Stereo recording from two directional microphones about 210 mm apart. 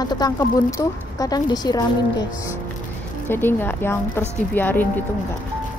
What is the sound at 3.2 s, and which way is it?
Speech, 10° left (ahead or behind).